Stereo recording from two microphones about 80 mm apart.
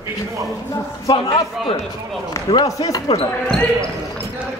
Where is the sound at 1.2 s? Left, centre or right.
Left.